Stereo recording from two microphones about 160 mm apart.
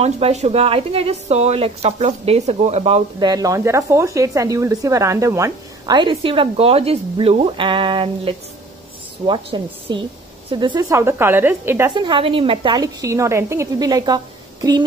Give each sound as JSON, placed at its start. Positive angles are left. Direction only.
{"t": 0.0, "sound": "speech", "side_deg": -40}
{"t": 3.2, "sound": "a woman's voice", "side_deg": -25}
{"t": 10.9, "sound": "a woman's voice", "side_deg": -15}
{"t": 11.9, "sound": "a woman's voice", "side_deg": -30}